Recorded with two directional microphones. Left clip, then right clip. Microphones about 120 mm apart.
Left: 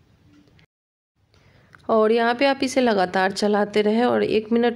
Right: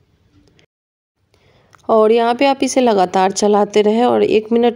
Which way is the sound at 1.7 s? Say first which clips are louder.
Right 7 dB; 40° right (ahead or behind).